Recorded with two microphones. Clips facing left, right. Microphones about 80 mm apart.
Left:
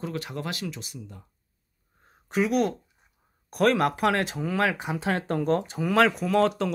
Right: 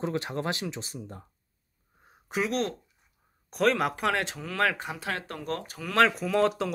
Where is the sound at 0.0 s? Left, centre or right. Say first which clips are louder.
Right 2 dB; right.